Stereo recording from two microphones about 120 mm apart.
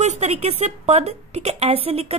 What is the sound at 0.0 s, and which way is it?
A woman's voice, 70° right (ahead or behind).